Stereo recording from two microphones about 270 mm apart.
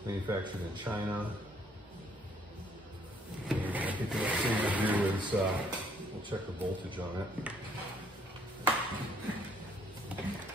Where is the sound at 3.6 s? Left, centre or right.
Centre.